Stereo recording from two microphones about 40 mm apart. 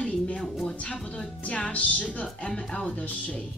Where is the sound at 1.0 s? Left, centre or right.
Left.